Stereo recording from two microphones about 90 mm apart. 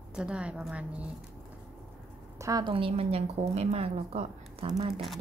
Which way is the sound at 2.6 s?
85° right.